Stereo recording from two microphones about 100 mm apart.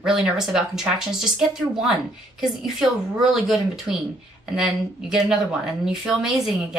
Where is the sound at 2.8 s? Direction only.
5° right (ahead or behind).